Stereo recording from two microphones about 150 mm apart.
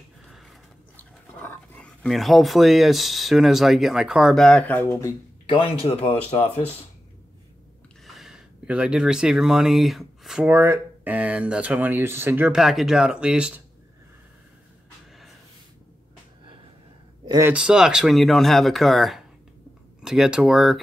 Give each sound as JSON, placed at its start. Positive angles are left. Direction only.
{"t": 0.3, "sound": "a sound", "side_deg": 0}
{"t": 0.9, "sound": "dog", "side_deg": 10}
{"t": 2.0, "sound": "speech", "side_deg": 0}
{"t": 5.5, "sound": "speech", "side_deg": 35}
{"t": 8.0, "sound": "speech", "side_deg": 0}
{"t": 17.5, "sound": "speech", "side_deg": -5}